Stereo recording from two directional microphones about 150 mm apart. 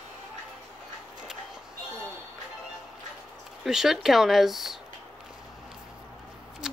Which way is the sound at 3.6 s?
5° right (ahead or behind).